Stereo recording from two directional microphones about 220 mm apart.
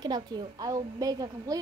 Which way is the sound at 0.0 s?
20° right (ahead or behind).